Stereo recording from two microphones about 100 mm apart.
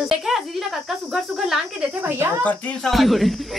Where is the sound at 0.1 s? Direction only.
5° right (ahead or behind).